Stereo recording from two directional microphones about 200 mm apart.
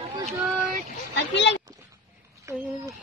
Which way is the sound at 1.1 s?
65° left (ahead or behind).